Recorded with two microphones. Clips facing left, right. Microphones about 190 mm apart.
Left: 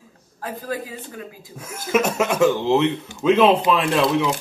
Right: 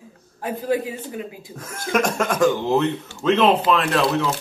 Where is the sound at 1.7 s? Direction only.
5° left (ahead or behind).